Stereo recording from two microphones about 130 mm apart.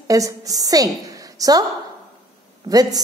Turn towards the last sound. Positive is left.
turn(degrees=-30)  # may be behind; listen again after turning